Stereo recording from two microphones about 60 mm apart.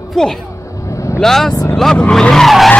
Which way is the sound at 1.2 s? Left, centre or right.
Centre.